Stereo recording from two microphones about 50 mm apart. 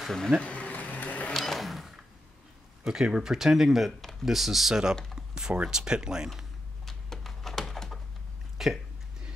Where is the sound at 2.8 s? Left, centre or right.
Centre.